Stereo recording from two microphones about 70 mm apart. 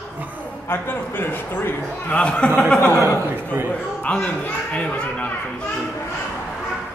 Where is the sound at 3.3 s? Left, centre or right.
Right.